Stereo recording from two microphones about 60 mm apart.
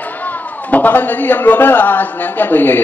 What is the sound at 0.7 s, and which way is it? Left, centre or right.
A man's voice, left.